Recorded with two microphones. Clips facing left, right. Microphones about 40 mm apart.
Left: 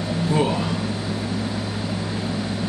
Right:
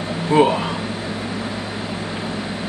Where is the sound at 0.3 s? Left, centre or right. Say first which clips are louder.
Right 7 dB; right.